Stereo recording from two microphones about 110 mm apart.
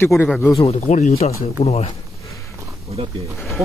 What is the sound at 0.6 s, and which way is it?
Speech, 80° left.